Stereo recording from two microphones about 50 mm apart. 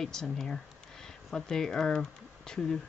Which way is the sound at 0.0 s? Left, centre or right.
Centre.